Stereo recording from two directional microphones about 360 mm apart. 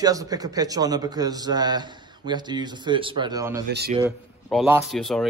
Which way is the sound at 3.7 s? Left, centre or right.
Right.